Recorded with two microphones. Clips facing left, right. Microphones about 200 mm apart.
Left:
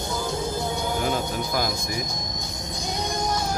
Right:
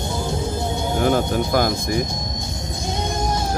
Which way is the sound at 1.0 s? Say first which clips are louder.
Right 11 dB; 60° right (ahead or behind).